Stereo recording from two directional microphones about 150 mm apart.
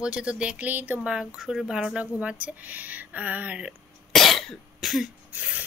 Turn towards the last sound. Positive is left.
turn(degrees=-10)  # may be behind; listen again after turning